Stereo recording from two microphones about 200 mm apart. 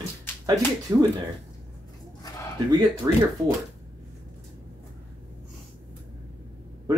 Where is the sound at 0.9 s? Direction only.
15° right (ahead or behind).